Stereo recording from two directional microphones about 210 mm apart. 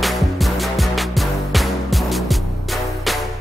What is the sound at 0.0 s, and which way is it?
Music, centre (ahead or behind).